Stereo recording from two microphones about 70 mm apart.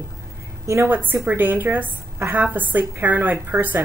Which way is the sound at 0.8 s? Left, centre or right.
Right.